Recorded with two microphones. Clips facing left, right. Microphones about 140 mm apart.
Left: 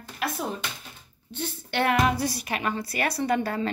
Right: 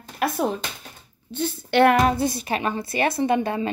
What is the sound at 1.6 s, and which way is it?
Music, 75° right (ahead or behind).